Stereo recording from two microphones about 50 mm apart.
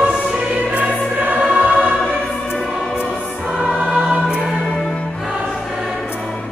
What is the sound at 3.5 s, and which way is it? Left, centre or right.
Music, right.